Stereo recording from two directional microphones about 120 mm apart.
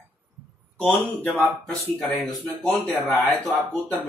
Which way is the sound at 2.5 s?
15° left (ahead or behind).